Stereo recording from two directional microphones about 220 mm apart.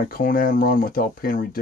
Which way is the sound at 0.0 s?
40° left (ahead or behind).